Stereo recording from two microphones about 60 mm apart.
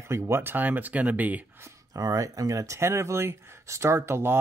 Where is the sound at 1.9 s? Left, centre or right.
Right.